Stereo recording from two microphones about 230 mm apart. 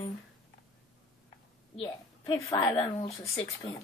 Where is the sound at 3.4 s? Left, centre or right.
Centre.